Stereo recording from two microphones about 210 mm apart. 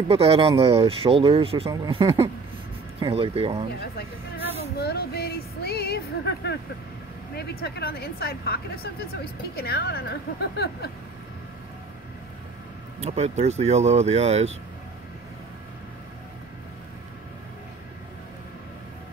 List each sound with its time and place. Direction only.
0.1 s speech: 30° right (ahead or behind)
4.7 s speech: 50° left (ahead or behind)
13.0 s speech: 30° right (ahead or behind)